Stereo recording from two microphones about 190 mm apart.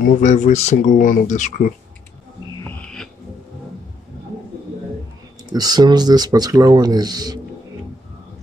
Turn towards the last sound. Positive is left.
turn(degrees=-20)  # may be behind; listen again after turning